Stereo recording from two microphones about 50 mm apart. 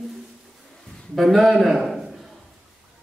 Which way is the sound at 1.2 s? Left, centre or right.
Centre.